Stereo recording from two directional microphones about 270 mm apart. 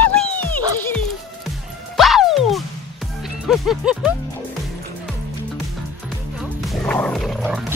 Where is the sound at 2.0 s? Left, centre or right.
Centre.